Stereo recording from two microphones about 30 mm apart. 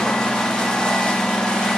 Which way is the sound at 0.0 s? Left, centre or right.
Left.